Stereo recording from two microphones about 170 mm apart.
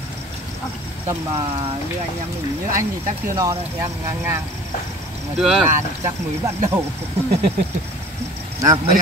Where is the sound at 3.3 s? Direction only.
20° right (ahead or behind).